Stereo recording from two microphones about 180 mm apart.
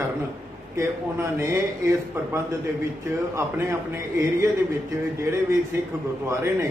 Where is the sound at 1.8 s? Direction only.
20° right (ahead or behind).